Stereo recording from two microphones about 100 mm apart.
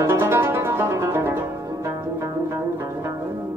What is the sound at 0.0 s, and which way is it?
Music, 25° right (ahead or behind).